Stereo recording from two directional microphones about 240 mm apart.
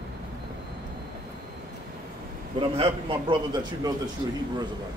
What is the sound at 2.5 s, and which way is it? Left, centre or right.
A man's voice, right.